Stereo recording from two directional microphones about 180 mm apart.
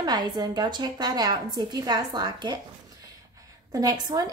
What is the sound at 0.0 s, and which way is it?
A woman's voice, 20° right (ahead or behind).